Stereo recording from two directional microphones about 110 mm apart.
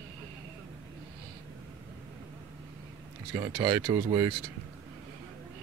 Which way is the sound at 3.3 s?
45° right (ahead or behind).